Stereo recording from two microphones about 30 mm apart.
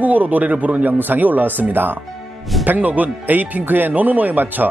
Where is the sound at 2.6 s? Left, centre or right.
Right.